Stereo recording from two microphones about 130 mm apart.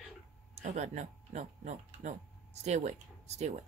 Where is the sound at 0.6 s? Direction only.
65° right (ahead or behind).